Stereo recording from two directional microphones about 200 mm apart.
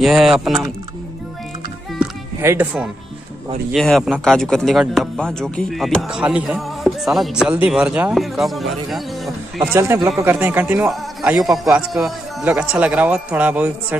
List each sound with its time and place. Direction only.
0.0 s speech: centre (ahead or behind)
2.0 s music: 10° right (ahead or behind)
3.7 s speech: centre (ahead or behind)